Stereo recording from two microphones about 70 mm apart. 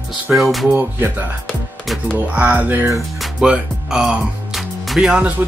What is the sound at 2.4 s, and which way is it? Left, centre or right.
Speech, right.